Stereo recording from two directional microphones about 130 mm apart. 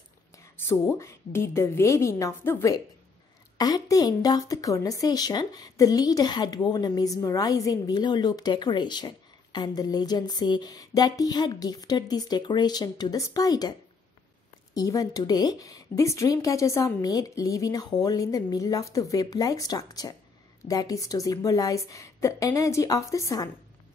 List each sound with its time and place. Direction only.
0.6 s speech: 20° left (ahead or behind)